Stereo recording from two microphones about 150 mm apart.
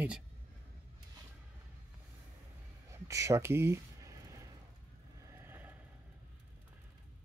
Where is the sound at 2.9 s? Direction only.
20° right (ahead or behind).